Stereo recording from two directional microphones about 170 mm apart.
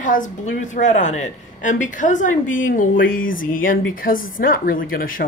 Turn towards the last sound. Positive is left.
turn(degrees=55)  # may be behind; listen again after turning